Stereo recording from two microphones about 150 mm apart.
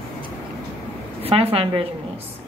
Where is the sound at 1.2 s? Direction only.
40° right (ahead or behind).